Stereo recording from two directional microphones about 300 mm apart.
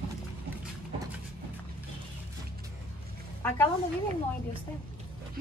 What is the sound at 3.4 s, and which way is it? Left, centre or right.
Speech, centre.